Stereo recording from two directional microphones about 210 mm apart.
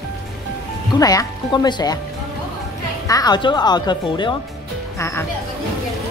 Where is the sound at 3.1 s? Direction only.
20° left (ahead or behind).